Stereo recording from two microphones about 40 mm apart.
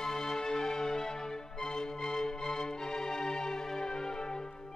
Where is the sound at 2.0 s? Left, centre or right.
Centre.